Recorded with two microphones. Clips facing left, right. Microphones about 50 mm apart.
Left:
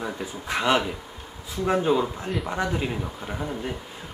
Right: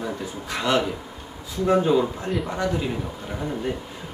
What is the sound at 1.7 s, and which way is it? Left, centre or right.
Speech, centre.